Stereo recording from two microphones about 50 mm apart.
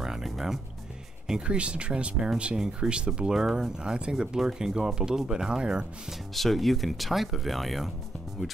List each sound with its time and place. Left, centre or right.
0.0 s music: centre
1.2 s speech: centre
6.3 s speech: centre